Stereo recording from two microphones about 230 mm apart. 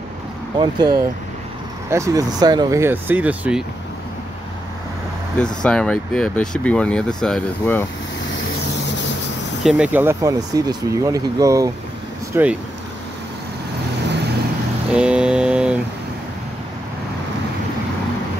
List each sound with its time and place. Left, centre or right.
0.6 s speech: centre
5.4 s speech: centre
9.6 s speech: centre
15.0 s mantra: centre